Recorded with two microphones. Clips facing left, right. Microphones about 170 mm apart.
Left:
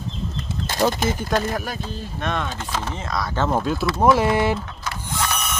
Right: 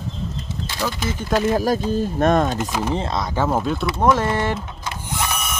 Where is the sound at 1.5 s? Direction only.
35° right (ahead or behind).